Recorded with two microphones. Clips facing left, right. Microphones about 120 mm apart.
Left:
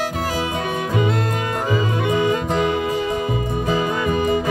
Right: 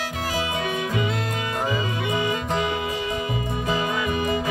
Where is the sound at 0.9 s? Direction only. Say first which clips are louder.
Left 5 dB; 45° left (ahead or behind).